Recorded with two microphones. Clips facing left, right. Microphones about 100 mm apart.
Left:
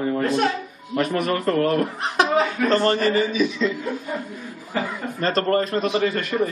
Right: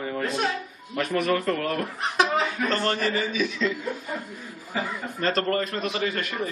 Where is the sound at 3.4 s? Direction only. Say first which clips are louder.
Left 4 dB; centre (ahead or behind).